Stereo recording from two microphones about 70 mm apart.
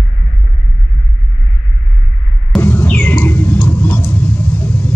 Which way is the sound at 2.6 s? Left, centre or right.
Left.